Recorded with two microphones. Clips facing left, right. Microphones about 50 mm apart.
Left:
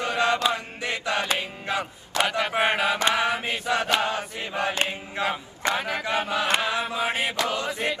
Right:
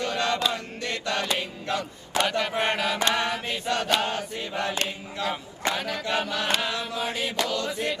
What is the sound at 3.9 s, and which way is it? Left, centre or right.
Chant, left.